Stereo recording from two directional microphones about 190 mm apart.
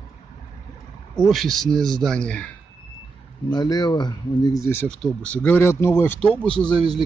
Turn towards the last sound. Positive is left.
turn(degrees=5)  # may be behind; listen again after turning